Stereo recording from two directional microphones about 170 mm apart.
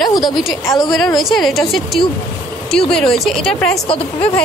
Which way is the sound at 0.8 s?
Centre (ahead or behind).